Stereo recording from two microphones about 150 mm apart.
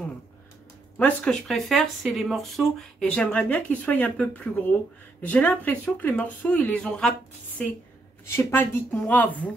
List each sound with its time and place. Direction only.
0.9 s speech: 5° left (ahead or behind)
8.3 s speech: 15° left (ahead or behind)